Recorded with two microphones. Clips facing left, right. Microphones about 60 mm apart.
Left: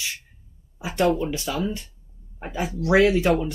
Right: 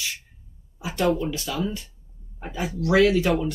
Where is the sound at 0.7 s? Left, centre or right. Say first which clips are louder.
Left 3 dB; left.